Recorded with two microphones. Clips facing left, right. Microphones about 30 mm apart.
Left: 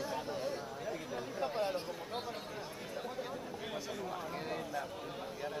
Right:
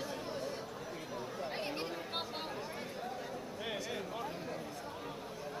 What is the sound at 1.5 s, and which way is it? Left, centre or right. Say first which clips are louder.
Chatter: left 6 dB; right.